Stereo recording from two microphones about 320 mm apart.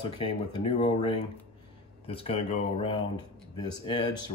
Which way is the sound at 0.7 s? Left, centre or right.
Centre.